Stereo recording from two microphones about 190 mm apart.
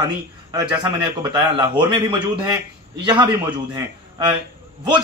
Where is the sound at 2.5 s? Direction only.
25° right (ahead or behind).